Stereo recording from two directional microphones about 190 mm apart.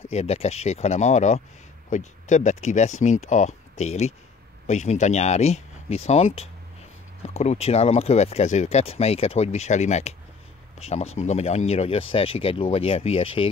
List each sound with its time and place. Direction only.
0.1 s speech: 35° left (ahead or behind)
11.1 s speech: 35° left (ahead or behind)